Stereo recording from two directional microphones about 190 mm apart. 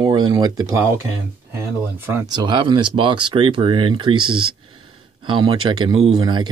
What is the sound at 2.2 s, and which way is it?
Speech, 25° right (ahead or behind).